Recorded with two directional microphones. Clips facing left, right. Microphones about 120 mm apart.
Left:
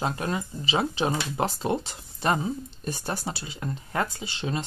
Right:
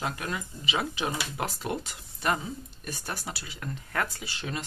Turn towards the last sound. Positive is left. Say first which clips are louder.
# left 5 dB
turn(degrees=25)  # may be behind; listen again after turning